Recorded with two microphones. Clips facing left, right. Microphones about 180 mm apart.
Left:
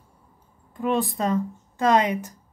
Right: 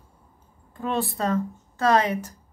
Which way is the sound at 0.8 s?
15° left (ahead or behind).